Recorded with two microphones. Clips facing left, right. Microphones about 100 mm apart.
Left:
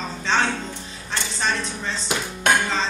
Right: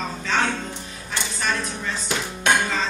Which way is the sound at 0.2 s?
30° left (ahead or behind).